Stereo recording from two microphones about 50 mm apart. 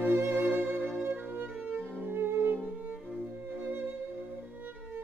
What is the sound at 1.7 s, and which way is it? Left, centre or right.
Cello, right.